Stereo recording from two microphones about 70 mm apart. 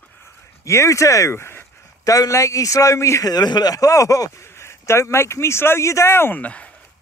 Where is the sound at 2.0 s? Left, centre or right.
Left.